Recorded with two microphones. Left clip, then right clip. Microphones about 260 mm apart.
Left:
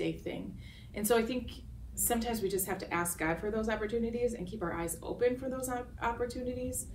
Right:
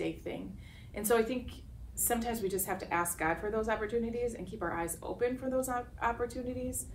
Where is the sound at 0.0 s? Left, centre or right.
Centre.